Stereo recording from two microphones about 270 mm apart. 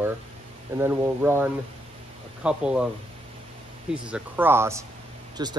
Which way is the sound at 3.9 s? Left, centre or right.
Centre.